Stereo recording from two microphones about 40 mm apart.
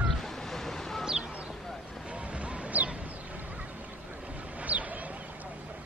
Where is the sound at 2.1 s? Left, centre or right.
Right.